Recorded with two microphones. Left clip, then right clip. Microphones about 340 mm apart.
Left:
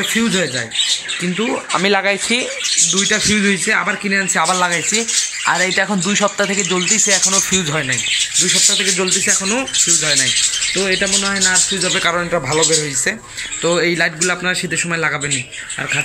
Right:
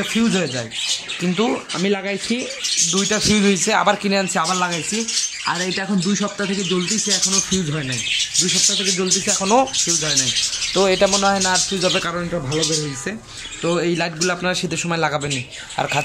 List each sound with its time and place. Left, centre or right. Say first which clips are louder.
0.2 s a man's voice: left 1 dB; centre
1.9 s speech: left 7 dB; left
2.9 s a man's voice: left 3 dB; centre
11.4 s a man's voice: left 2 dB; centre
13.7 s a man's voice: left 5 dB; centre